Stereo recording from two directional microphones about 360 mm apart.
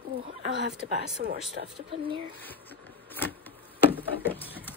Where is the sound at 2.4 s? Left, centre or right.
Centre.